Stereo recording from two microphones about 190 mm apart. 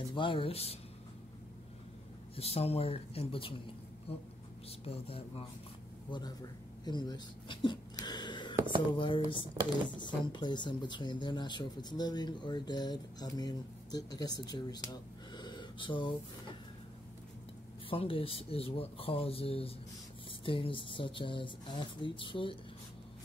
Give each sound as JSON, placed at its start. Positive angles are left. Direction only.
{"t": 0.1, "sound": "speech", "side_deg": 25}
{"t": 2.3, "sound": "a man's voice", "side_deg": 30}
{"t": 6.8, "sound": "a sound", "side_deg": 20}
{"t": 8.9, "sound": "speech", "side_deg": 25}
{"t": 9.6, "sound": "speech", "side_deg": -15}
{"t": 9.9, "sound": "speech", "side_deg": 25}
{"t": 17.8, "sound": "speech", "side_deg": 30}